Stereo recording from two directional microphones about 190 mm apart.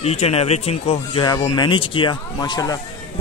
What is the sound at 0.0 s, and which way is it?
Speech, 35° left (ahead or behind).